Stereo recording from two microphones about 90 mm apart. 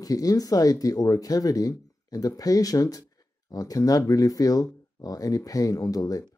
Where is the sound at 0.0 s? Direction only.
40° left (ahead or behind).